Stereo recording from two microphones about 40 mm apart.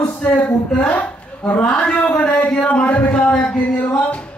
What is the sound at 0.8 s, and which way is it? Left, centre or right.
Speech, left.